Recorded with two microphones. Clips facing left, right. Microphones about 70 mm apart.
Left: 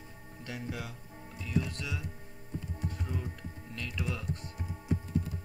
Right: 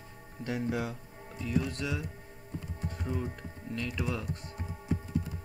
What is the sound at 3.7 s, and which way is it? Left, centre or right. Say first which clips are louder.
Speech: right 4 dB; centre.